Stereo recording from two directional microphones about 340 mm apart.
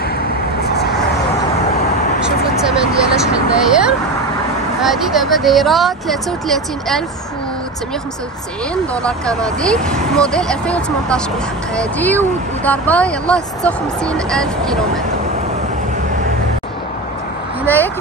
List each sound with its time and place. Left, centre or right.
2.6 s speech: centre
9.0 s speech: centre